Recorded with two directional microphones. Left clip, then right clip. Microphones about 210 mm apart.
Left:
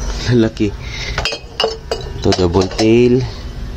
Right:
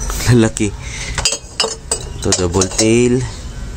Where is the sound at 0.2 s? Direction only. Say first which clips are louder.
Right 1 dB; 25° right (ahead or behind).